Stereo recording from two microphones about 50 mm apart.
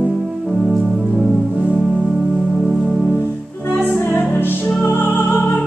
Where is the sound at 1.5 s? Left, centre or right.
Right.